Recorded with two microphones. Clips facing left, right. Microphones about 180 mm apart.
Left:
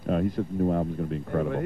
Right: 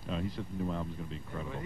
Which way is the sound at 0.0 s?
55° left (ahead or behind).